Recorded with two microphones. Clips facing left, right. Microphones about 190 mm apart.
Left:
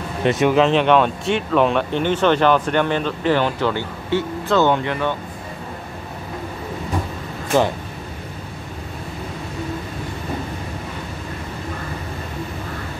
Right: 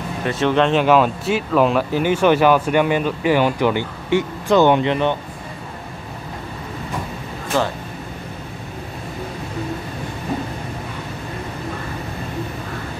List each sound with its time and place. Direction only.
0.2 s speech: 20° left (ahead or behind)
0.5 s speech: centre (ahead or behind); by 5.1 s 20° right (ahead or behind)